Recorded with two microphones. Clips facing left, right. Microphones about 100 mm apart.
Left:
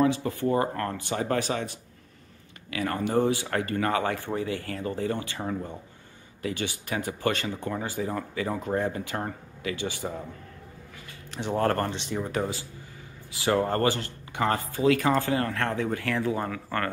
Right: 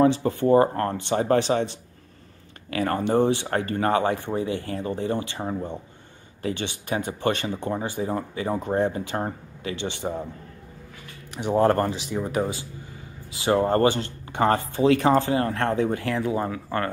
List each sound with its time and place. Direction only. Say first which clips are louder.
0.0 s speech: right 5 dB; 35° right (ahead or behind)
2.7 s speech: right 4 dB; 35° right (ahead or behind)
11.3 s speech: right 5 dB; 15° right (ahead or behind)
11.9 s speech: right 3 dB; 5° right (ahead or behind); by 16.9 s 20° right (ahead or behind)